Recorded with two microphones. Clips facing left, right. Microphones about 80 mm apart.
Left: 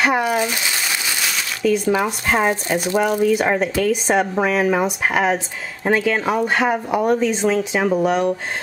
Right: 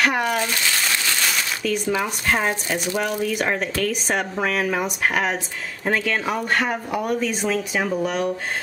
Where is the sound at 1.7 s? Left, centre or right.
Centre.